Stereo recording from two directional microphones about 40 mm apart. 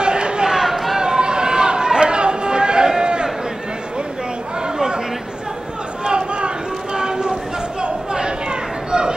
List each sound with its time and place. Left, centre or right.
0.0 s chatter: right
0.6 s chatter: centre
0.9 s chatter: centre
3.0 s a sound: right
4.7 s chatter: centre
6.0 s a sound: right
7.8 s chatter: right